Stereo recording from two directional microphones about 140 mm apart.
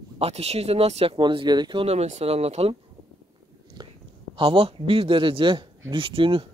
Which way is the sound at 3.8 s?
30° right (ahead or behind).